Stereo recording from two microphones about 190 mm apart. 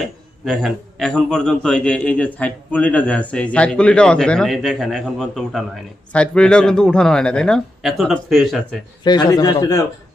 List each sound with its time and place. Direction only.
0.5 s a man's voice: centre (ahead or behind)
9.0 s speech: 20° left (ahead or behind)